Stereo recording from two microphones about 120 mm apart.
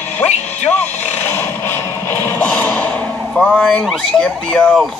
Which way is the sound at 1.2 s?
20° left (ahead or behind).